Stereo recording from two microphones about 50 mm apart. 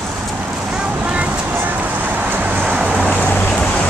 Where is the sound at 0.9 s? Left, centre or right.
Right.